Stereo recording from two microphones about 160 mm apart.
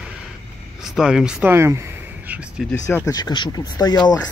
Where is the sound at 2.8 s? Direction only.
20° left (ahead or behind).